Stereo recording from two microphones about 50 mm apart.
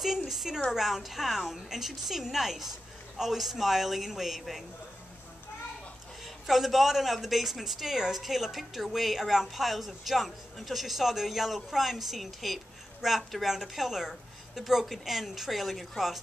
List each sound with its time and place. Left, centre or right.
0.3 s a woman's voice: centre
6.2 s a woman's voice: centre